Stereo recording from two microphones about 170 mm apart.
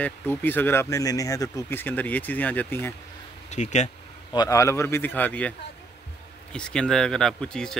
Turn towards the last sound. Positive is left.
turn(degrees=5)  # may be behind; listen again after turning